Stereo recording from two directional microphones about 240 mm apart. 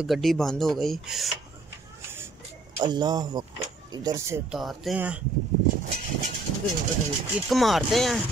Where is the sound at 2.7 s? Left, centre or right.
Centre.